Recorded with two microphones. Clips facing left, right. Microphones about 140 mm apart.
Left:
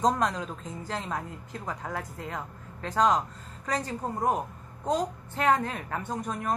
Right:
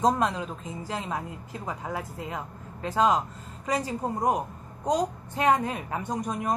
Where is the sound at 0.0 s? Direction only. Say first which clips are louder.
Right 2 dB; 10° right (ahead or behind).